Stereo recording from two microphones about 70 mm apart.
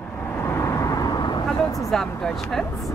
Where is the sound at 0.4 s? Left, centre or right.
Left.